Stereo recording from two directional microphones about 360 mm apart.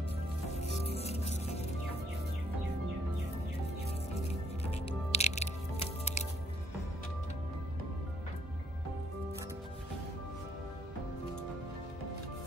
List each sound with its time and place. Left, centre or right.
0.6 s music: centre
4.6 s music: centre